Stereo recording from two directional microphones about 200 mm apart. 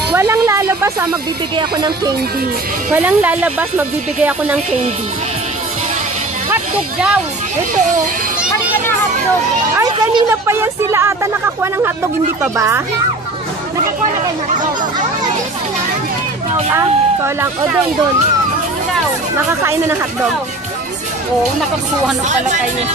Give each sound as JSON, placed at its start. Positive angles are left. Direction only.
{"t": 0.1, "sound": "a sound", "side_deg": -10}
{"t": 1.6, "sound": "speech", "side_deg": -20}
{"t": 2.9, "sound": "a woman's voice", "side_deg": -10}
{"t": 6.5, "sound": "speech", "side_deg": -5}
{"t": 9.8, "sound": "a woman's voice", "side_deg": -15}
{"t": 16.7, "sound": "speech", "side_deg": -15}
{"t": 19.6, "sound": "a woman's voice", "side_deg": -15}
{"t": 21.4, "sound": "speech", "side_deg": 0}